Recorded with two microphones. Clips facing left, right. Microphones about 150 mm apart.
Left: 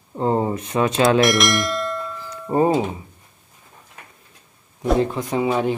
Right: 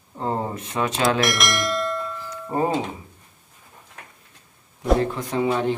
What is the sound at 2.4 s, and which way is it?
Speech, 25° left (ahead or behind).